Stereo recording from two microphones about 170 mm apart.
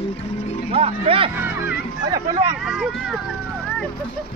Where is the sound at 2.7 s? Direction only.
5° right (ahead or behind).